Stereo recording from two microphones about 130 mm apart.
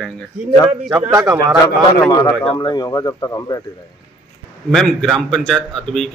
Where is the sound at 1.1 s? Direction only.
25° right (ahead or behind).